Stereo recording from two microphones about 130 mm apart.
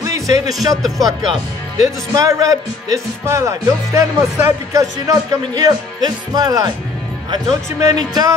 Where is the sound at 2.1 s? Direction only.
25° right (ahead or behind).